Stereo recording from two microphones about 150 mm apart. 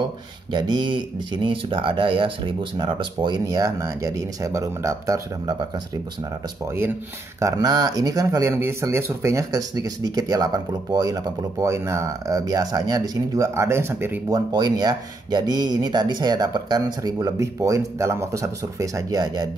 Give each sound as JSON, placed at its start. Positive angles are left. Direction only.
{"t": 0.5, "sound": "speech", "side_deg": -30}
{"t": 7.3, "sound": "speech", "side_deg": -20}
{"t": 14.5, "sound": "speech", "side_deg": -25}